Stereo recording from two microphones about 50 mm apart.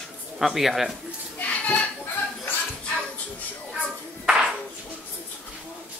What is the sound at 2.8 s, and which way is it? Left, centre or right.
Music, left.